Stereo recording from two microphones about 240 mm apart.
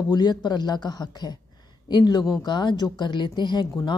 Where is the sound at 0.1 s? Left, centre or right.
Centre.